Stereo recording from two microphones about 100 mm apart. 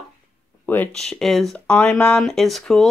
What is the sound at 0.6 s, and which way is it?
Speech, 20° left (ahead or behind).